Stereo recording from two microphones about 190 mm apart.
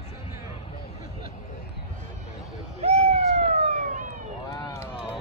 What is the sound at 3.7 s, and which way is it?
Emergency vehicle, 45° right (ahead or behind).